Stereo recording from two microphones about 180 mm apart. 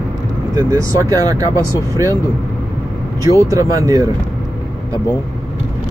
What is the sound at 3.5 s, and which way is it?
Speech, 20° right (ahead or behind).